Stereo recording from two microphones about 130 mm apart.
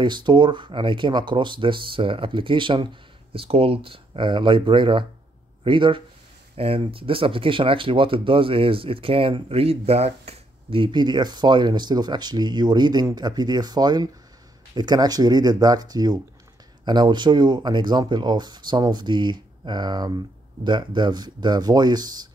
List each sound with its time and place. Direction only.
0.0 s speech: 35° right (ahead or behind)